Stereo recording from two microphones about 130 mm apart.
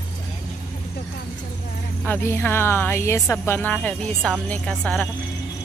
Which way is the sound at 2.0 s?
15° left (ahead or behind).